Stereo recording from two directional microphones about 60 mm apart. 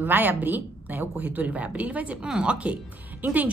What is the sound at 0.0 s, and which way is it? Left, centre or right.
A woman's voice, right.